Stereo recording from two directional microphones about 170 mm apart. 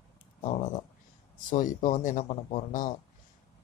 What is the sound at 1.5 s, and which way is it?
Speech, 50° left (ahead or behind).